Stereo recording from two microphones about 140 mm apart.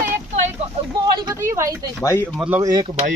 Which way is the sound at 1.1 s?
25° right (ahead or behind).